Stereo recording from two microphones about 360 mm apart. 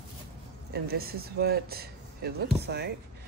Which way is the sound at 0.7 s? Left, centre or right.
Right.